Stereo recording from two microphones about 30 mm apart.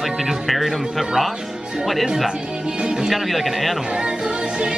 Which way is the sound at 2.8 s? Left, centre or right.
Right.